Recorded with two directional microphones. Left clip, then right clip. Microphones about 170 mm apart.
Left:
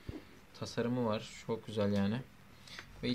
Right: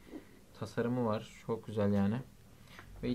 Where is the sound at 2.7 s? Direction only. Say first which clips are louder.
Left 1 dB; 15° left (ahead or behind).